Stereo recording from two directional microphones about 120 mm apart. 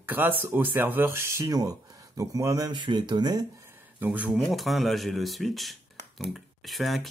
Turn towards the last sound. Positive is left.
turn(degrees=0)  # may be behind; listen again after turning